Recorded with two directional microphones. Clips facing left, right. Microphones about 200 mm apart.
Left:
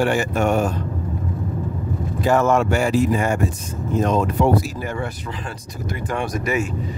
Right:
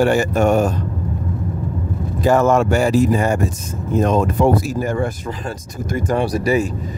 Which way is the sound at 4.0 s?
50° right (ahead or behind).